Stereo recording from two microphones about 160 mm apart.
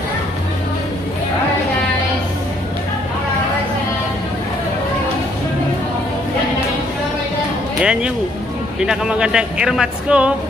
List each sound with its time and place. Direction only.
7.8 s speech: 5° right (ahead or behind)